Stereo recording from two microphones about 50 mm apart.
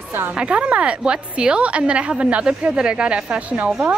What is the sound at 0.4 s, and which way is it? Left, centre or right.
Speech, right.